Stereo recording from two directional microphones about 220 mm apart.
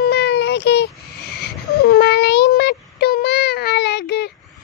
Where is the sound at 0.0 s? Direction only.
45° left (ahead or behind).